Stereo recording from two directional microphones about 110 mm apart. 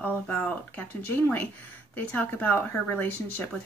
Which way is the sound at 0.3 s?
15° left (ahead or behind).